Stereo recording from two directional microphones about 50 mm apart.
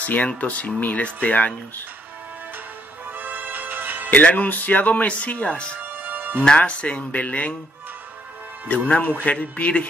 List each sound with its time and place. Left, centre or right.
0.0 s speech: left
3.2 s music: right
4.1 s speech: left
5.8 s music: right
6.4 s speech: left
8.6 s speech: left